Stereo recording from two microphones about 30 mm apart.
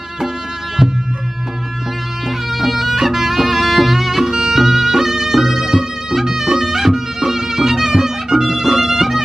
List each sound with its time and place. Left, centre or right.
2.5 s music: centre